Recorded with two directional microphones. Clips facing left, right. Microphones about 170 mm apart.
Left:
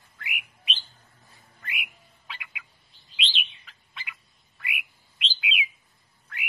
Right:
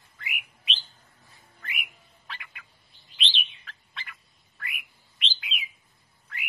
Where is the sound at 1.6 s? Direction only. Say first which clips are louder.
Left 1 dB; 5° left (ahead or behind).